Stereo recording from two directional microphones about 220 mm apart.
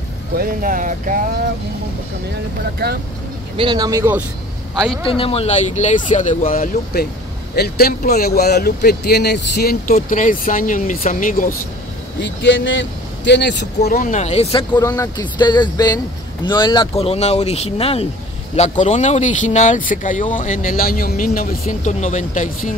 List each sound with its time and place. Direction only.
0.4 s speech: 40° right (ahead or behind)
2.8 s speech: 45° right (ahead or behind)
3.5 s speech: 20° right (ahead or behind)
5.0 s speech: 25° left (ahead or behind)
12.2 s speech: 55° left (ahead or behind); by 14.7 s 25° left (ahead or behind)
14.7 s speech: 15° left (ahead or behind); by 22.8 s 35° left (ahead or behind)